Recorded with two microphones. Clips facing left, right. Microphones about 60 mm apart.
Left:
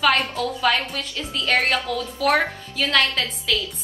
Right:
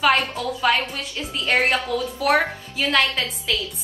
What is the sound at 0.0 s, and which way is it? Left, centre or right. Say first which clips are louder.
A woman's voice: even; centre.